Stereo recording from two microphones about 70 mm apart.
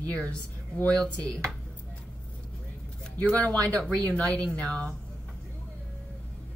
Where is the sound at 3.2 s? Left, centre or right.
Centre.